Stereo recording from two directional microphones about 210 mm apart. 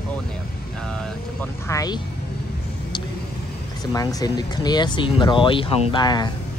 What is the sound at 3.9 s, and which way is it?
Speech, 15° left (ahead or behind).